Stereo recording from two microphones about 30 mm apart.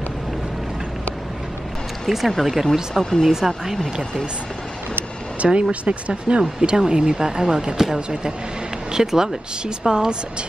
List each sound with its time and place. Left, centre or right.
2.0 s speech: centre
3.0 s speech: centre
5.4 s speech: right
6.8 s speech: right
9.8 s speech: right